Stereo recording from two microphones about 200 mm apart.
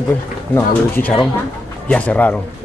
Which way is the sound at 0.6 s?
10° left (ahead or behind).